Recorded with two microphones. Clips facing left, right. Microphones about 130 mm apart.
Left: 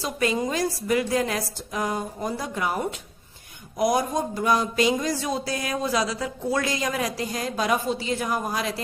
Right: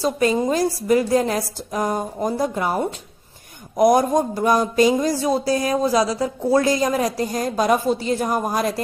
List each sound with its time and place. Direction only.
0.0 s speech: 35° right (ahead or behind)
3.7 s speech: 50° right (ahead or behind)